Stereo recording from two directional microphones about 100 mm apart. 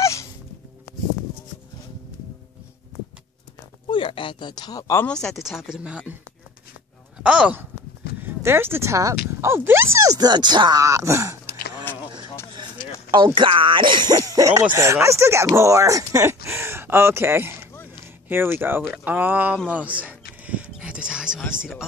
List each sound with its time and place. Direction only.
0.0 s music: 30° left (ahead or behind)
3.9 s speech: 60° left (ahead or behind); by 5.0 s 35° left (ahead or behind)
5.0 s speech: 5° left (ahead or behind)
7.2 s speech: 10° right (ahead or behind)
8.2 s speech: 20° right (ahead or behind)
10.0 s speech: 40° right (ahead or behind)
11.9 s a sound: 20° left (ahead or behind)
13.1 s speech: 50° right (ahead or behind); by 19.6 s 15° right (ahead or behind)
19.7 s a sound: 15° right (ahead or behind)